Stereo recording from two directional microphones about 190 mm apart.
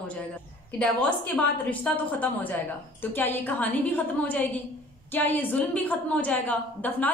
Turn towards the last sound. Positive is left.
turn(degrees=10)  # may be behind; listen again after turning